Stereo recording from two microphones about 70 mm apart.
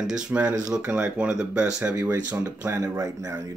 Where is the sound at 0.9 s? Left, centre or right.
Right.